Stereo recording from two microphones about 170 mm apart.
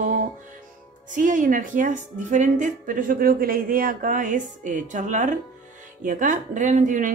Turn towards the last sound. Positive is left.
turn(degrees=-50)  # may be behind; listen again after turning